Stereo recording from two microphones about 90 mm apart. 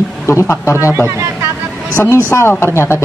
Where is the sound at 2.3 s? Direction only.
30° left (ahead or behind).